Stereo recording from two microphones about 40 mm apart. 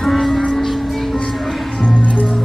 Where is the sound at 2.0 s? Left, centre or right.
Left.